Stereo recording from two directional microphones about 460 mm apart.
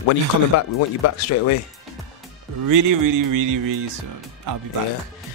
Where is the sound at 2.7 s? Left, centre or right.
Right.